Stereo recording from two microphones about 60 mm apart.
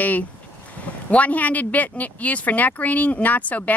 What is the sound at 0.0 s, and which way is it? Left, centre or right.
Speech, left.